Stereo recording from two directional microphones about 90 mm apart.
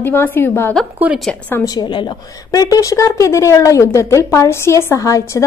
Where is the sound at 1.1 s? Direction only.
15° right (ahead or behind).